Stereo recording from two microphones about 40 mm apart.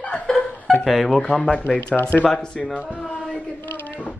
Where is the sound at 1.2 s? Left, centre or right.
Centre.